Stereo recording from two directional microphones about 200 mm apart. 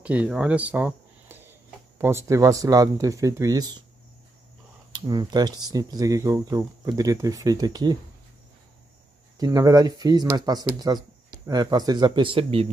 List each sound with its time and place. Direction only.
0.0 s speech: 5° right (ahead or behind)
4.9 s speech: 20° right (ahead or behind)
9.4 s speech: 20° right (ahead or behind)